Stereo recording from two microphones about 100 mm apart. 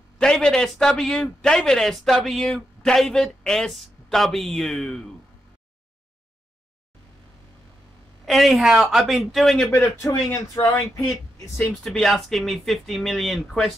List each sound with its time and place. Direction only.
0.2 s a man's voice: 5° left (ahead or behind)
8.3 s a man's voice: centre (ahead or behind)
10.0 s speech: 35° left (ahead or behind)
11.6 s a man's voice: 5° left (ahead or behind)